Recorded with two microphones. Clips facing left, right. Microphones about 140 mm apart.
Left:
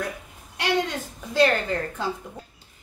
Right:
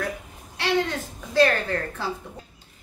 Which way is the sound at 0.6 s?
15° left (ahead or behind).